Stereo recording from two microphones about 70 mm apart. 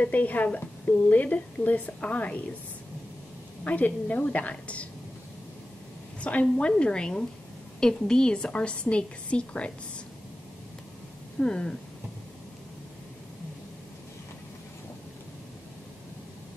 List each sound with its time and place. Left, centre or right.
0.0 s a woman's voice: left
3.6 s a woman's voice: left
6.4 s a woman's voice: centre
11.3 s a woman's voice: centre